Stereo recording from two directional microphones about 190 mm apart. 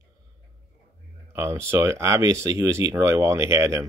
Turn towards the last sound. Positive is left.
turn(degrees=-15)  # may be behind; listen again after turning